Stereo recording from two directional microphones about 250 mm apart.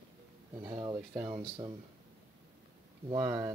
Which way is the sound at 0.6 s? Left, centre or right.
Centre.